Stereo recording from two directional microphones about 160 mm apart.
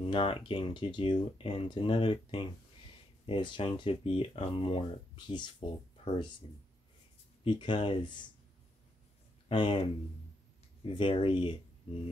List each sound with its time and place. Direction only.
0.0 s speech: 35° left (ahead or behind)
7.4 s speech: 30° left (ahead or behind)
9.5 s speech: 30° left (ahead or behind)